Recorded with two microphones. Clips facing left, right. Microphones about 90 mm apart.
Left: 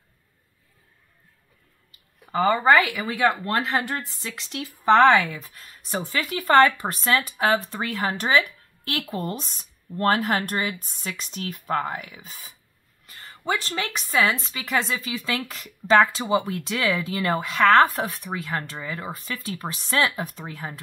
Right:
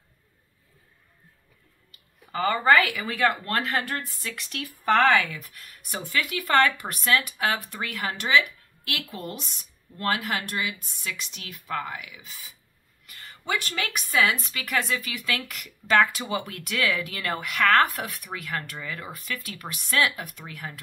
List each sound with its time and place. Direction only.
1.9 s speech: 25° left (ahead or behind); by 12.5 s 45° left (ahead or behind)
13.0 s a woman's voice: 30° left (ahead or behind)